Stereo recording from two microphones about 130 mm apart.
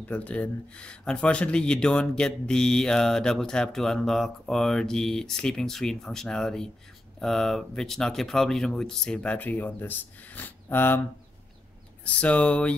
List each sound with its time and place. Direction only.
0.0 s speech: 10° left (ahead or behind)
12.0 s speech: 10° left (ahead or behind)